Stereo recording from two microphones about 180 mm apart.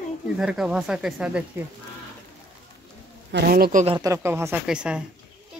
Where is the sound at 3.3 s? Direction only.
55° right (ahead or behind).